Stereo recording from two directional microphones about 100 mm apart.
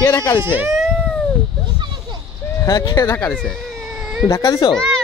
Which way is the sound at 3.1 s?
10° left (ahead or behind).